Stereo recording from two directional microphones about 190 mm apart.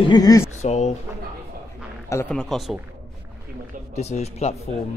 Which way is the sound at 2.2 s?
5° left (ahead or behind).